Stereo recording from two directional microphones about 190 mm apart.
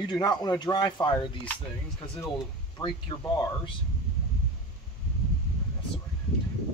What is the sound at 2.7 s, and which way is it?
Speech, 20° left (ahead or behind).